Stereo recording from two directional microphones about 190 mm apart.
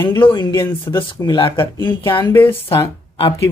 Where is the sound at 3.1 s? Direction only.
25° left (ahead or behind).